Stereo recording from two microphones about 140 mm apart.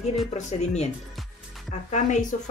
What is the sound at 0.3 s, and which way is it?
Speech, 55° left (ahead or behind).